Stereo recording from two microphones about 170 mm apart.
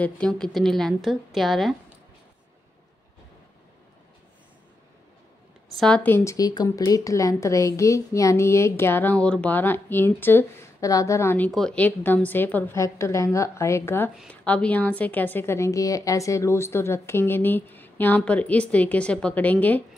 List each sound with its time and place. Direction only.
0.0 s a woman's voice: 5° left (ahead or behind)
5.8 s speech: 5° left (ahead or behind)